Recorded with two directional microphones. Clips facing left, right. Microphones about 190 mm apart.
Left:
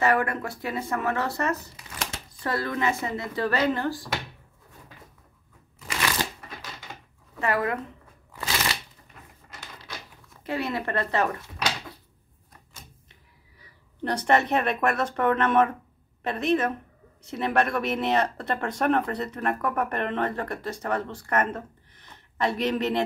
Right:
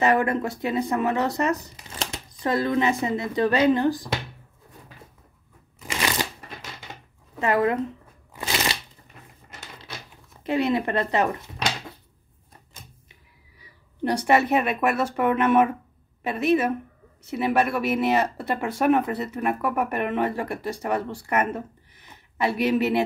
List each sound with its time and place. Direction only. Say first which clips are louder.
0.0 s speech: right 3 dB; 20° right (ahead or behind)
5.8 s shuffling cards: right 2 dB; 20° right (ahead or behind)
7.3 s speech: right 4 dB; 20° right (ahead or behind)
8.3 s a sound: right 2 dB; 20° right (ahead or behind)
10.4 s speech: right 6 dB; 20° right (ahead or behind)
14.0 s speech: right 3 dB; 10° right (ahead or behind)